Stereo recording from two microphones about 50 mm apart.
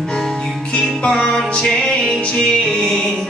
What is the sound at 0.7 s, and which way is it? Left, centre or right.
Music, centre.